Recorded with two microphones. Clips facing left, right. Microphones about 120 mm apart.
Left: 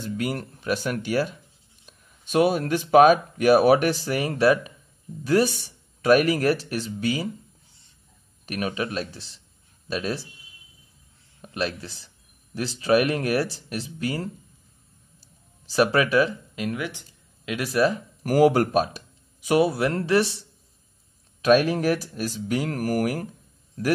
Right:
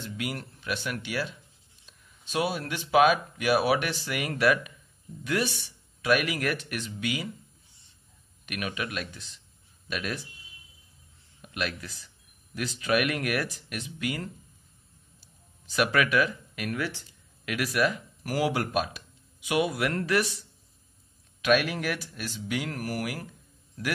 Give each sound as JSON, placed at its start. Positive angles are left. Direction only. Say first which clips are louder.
{"t": 0.0, "sound": "speech", "louder": "left 7 dB", "side_deg": 40}
{"t": 8.5, "sound": "speech", "louder": "left 6 dB", "side_deg": 35}
{"t": 11.4, "sound": "speech", "louder": "left 5 dB", "side_deg": 30}
{"t": 18.2, "sound": "speech", "louder": "left 10 dB", "side_deg": 45}